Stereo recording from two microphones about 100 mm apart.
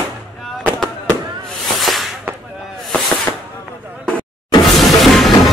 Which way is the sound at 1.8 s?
Centre (ahead or behind).